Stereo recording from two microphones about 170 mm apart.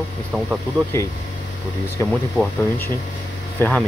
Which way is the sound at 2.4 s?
15° left (ahead or behind).